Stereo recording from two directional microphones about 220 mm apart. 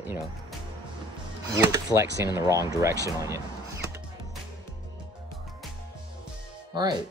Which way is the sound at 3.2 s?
15° right (ahead or behind).